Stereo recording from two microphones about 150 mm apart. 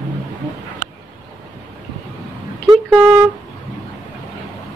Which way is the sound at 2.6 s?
5° right (ahead or behind).